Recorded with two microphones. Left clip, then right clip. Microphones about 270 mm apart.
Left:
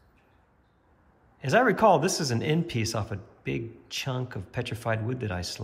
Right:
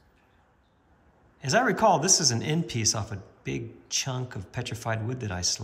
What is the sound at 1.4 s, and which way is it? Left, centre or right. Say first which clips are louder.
Speech: left 1 dB; centre.